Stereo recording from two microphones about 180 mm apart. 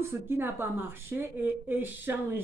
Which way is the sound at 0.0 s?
15° right (ahead or behind).